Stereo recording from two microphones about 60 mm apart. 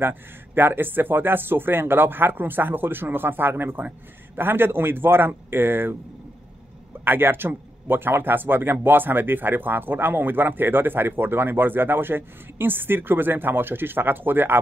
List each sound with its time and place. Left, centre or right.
0.0 s speech: right
7.1 s speech: right